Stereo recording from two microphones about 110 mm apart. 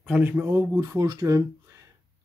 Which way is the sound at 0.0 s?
10° right (ahead or behind).